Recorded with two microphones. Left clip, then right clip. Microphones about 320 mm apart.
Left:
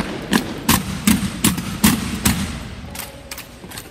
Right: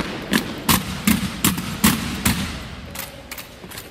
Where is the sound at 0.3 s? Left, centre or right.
Centre.